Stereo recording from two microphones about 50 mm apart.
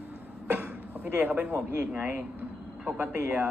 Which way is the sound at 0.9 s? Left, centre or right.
Right.